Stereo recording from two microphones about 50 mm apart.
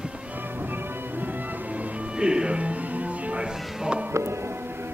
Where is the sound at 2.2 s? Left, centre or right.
Centre.